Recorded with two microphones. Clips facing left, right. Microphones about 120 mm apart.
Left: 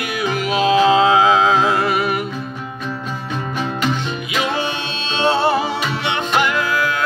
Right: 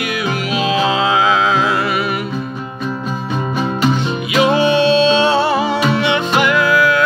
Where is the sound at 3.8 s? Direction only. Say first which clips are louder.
Right 5 dB; 15° right (ahead or behind).